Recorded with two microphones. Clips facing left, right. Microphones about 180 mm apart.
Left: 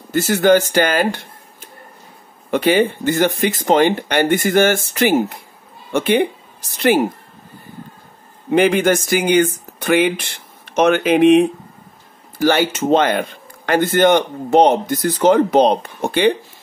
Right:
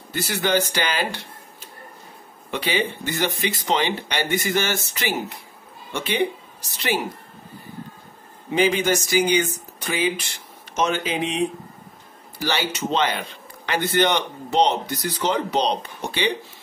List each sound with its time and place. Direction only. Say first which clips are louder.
0.1 s a man's voice: left 9 dB; 45° left (ahead or behind)
8.5 s speech: left 6 dB; 55° left (ahead or behind)
12.4 s a man's voice: left 10 dB; 50° left (ahead or behind)